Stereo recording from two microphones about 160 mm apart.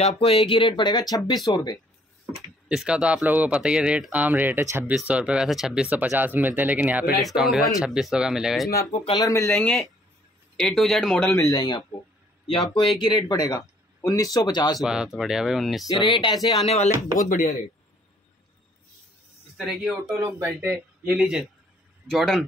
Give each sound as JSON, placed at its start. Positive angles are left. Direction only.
{"t": 0.0, "sound": "speech", "side_deg": 35}
{"t": 2.7, "sound": "speech", "side_deg": -5}
{"t": 9.2, "sound": "speech", "side_deg": 20}
{"t": 9.6, "sound": "speech", "side_deg": 10}
{"t": 11.3, "sound": "speech", "side_deg": 20}
{"t": 13.0, "sound": "speech", "side_deg": 25}
{"t": 14.8, "sound": "speech", "side_deg": -5}
{"t": 15.9, "sound": "speech", "side_deg": 30}
{"t": 16.6, "sound": "speech", "side_deg": 45}
{"t": 17.3, "sound": "speech", "side_deg": 55}
{"t": 19.5, "sound": "speech", "side_deg": 0}
{"t": 20.2, "sound": "speech", "side_deg": -15}